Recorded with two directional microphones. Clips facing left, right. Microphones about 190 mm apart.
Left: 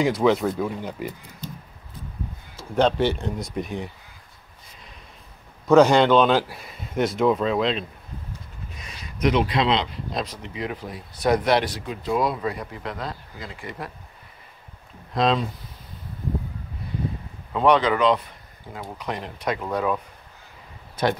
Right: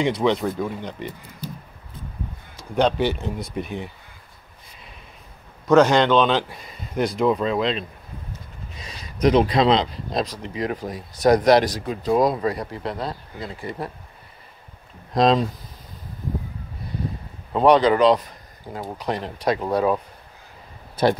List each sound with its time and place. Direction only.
0.0 s speech: centre (ahead or behind)
1.4 s a sound: 10° right (ahead or behind)
2.7 s speech: centre (ahead or behind)
5.7 s speech: 10° left (ahead or behind)
8.8 s speech: 35° right (ahead or behind)
15.1 s speech: 40° right (ahead or behind)
17.5 s speech: 35° right (ahead or behind)